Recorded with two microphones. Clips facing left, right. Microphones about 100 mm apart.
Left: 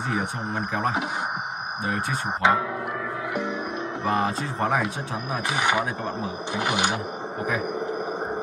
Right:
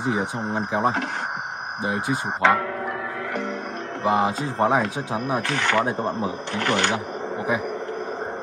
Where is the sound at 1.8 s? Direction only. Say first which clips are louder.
Right 3 dB; 20° right (ahead or behind).